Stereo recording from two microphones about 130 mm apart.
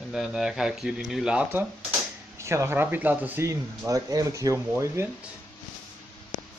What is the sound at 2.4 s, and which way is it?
Speech, 20° right (ahead or behind).